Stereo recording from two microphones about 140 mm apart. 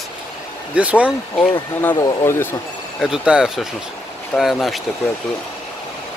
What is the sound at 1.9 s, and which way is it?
Speech, 30° left (ahead or behind).